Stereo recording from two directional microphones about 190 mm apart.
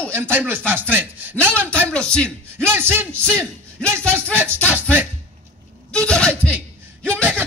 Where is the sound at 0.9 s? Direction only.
10° right (ahead or behind).